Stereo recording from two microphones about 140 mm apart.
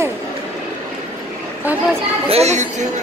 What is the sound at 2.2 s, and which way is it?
Speech, 50° right (ahead or behind).